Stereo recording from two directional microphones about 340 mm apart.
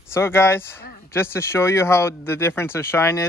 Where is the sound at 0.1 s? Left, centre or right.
Centre.